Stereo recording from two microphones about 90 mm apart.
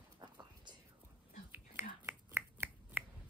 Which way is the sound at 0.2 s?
60° right (ahead or behind).